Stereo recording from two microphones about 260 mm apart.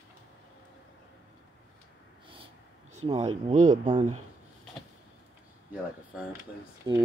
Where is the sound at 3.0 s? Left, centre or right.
Right.